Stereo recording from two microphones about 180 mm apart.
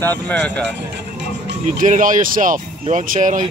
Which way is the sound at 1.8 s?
50° right (ahead or behind).